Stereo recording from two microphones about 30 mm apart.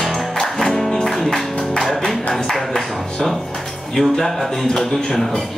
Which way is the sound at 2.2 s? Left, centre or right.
Centre.